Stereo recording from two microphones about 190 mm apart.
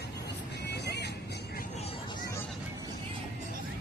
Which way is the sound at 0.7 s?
60° left (ahead or behind).